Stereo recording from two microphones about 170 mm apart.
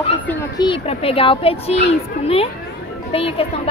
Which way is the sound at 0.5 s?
30° left (ahead or behind).